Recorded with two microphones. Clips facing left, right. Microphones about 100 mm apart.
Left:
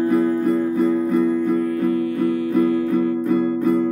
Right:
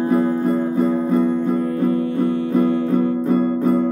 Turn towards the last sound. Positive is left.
turn(degrees=-20)  # may be behind; listen again after turning